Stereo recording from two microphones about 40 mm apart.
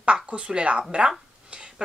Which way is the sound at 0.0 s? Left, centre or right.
Right.